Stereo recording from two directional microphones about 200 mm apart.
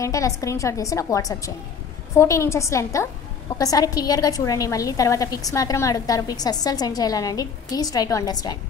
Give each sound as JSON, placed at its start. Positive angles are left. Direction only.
{"t": 0.0, "sound": "a woman's voice", "side_deg": 15}